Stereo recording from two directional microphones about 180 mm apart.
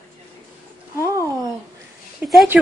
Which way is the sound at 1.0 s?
15° right (ahead or behind).